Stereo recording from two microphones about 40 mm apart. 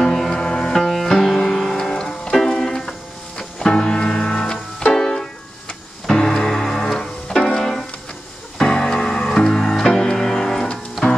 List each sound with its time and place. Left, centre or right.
0.0 s music: centre
0.7 s music: centre
8.5 s music: centre
11.0 s music: centre